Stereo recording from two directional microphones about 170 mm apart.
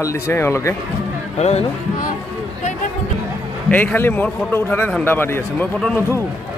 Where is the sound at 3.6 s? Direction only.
10° left (ahead or behind).